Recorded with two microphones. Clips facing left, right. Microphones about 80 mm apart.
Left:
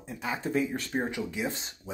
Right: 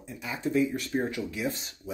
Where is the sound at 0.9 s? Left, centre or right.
Left.